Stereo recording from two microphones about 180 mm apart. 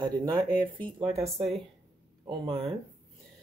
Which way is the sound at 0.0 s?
25° right (ahead or behind).